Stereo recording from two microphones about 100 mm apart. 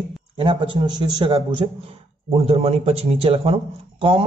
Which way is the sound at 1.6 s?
60° right (ahead or behind).